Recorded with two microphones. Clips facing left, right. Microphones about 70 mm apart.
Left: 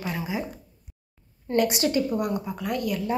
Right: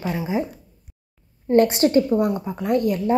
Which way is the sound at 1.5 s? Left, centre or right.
Right.